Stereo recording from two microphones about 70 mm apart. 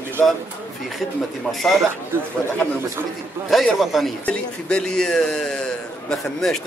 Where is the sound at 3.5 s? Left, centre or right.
Centre.